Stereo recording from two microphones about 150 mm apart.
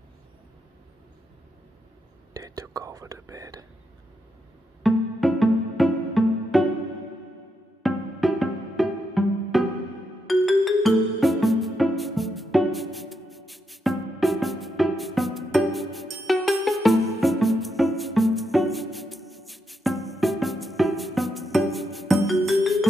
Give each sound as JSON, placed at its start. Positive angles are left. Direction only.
{"t": 2.3, "sound": "whispering", "side_deg": -20}
{"t": 4.8, "sound": "music", "side_deg": 0}
{"t": 7.8, "sound": "music", "side_deg": 0}